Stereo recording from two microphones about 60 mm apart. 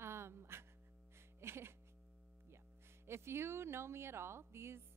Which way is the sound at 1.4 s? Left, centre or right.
Right.